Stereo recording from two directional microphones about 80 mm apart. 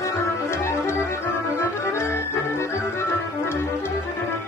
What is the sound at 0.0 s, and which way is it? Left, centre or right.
Music, left.